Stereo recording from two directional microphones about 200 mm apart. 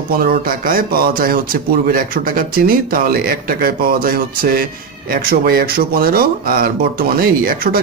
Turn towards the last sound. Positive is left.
turn(degrees=-45)  # may be behind; listen again after turning